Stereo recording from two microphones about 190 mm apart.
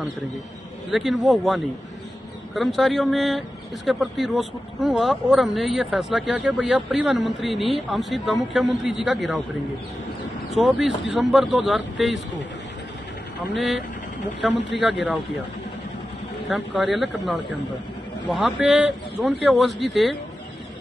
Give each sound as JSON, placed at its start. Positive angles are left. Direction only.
{"t": 0.9, "sound": "speech", "side_deg": 0}
{"t": 10.5, "sound": "speech", "side_deg": 0}
{"t": 14.5, "sound": "speech", "side_deg": 65}
{"t": 16.4, "sound": "speech", "side_deg": 0}